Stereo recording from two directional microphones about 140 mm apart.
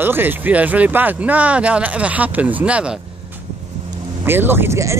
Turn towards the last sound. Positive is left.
turn(degrees=-20)  # may be behind; listen again after turning